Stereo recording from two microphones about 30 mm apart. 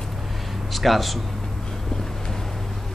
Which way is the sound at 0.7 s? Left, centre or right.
Centre.